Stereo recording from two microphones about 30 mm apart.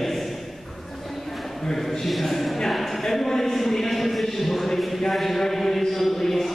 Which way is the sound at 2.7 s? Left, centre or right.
Centre.